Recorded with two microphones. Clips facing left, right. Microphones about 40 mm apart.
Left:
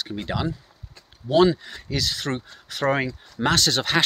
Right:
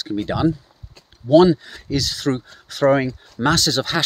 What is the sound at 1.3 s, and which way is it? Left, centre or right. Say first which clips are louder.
Speech: right 5 dB; left.